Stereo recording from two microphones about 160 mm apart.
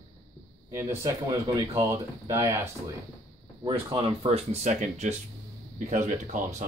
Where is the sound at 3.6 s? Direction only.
30° right (ahead or behind); by 6.7 s 50° right (ahead or behind).